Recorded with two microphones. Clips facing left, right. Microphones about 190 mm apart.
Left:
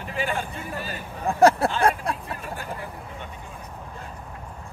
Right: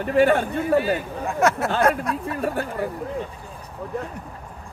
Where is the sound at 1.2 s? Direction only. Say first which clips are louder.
Left 4 dB; 35° left (ahead or behind).